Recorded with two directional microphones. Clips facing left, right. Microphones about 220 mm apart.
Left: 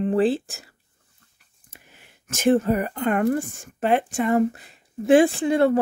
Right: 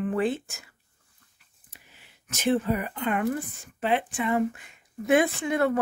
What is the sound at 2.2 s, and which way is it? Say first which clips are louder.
Speech: left 6 dB; 45° left (ahead or behind).